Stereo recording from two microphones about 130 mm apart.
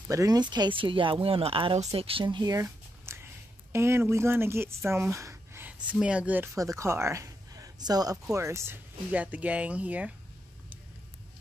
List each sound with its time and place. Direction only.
0.1 s speech: 25° right (ahead or behind)
6.6 s speech: 25° right (ahead or behind)